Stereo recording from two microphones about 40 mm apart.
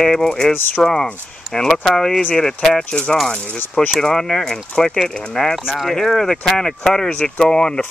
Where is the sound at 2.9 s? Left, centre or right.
Left.